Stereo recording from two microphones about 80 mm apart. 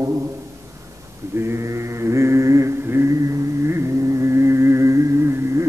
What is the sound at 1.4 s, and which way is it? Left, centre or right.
Chant, right.